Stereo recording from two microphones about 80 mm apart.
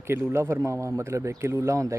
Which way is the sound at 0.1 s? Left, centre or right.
Right.